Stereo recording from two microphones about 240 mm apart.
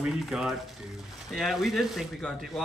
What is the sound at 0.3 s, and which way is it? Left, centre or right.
Speech, centre.